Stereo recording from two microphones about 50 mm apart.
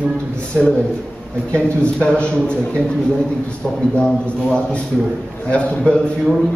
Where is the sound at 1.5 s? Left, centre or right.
Left.